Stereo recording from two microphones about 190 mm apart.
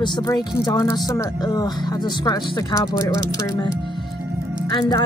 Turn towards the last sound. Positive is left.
turn(degrees=20)  # may be behind; listen again after turning